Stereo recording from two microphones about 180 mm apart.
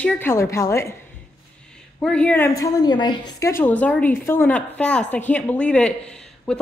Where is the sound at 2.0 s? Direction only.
5° left (ahead or behind).